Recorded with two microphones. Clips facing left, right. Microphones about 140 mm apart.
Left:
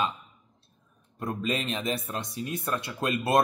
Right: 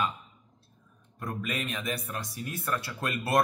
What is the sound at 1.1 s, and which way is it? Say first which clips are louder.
Speech: left 4 dB; 25° left (ahead or behind).